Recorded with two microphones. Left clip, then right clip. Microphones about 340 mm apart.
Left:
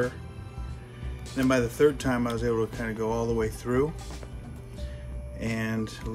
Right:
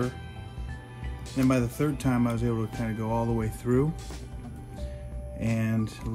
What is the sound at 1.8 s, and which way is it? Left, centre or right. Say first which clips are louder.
Speech: left 5 dB; centre.